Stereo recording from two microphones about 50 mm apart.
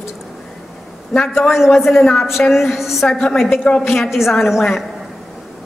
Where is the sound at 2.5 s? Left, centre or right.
Centre.